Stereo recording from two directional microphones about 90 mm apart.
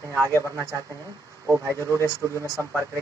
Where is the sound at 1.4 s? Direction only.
35° right (ahead or behind).